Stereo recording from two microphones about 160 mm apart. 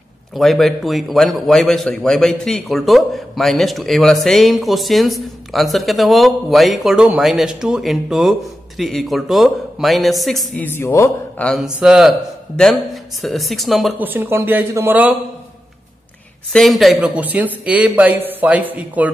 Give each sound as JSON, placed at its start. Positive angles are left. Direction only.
{"t": 0.3, "sound": "speech", "side_deg": 0}
{"t": 11.4, "sound": "speech", "side_deg": 0}
{"t": 13.9, "sound": "a man's voice", "side_deg": -10}
{"t": 16.5, "sound": "a man's voice", "side_deg": 0}